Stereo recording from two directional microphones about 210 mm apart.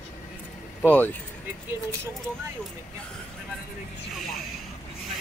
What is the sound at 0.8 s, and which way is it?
Speech, 10° left (ahead or behind).